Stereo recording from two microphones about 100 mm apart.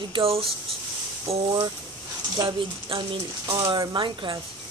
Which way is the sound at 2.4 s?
55° right (ahead or behind).